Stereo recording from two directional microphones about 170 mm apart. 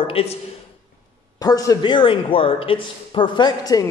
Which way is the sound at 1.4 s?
20° left (ahead or behind).